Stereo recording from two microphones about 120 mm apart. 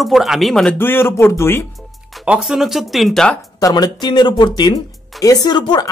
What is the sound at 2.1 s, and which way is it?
Speech, 5° right (ahead or behind).